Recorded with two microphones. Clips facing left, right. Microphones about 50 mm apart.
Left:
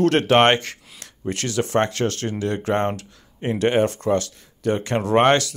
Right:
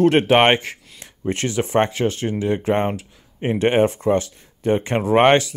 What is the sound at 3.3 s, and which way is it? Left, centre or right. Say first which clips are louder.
Speech: right 2 dB; right.